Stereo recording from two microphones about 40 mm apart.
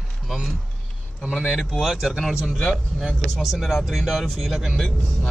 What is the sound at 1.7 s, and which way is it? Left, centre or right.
Speech, centre.